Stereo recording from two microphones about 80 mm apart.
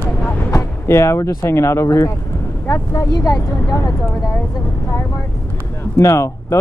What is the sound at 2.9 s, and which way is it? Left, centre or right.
Speech, left.